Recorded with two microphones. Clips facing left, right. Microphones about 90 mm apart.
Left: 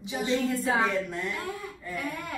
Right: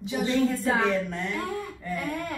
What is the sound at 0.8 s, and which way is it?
Speech, 5° left (ahead or behind).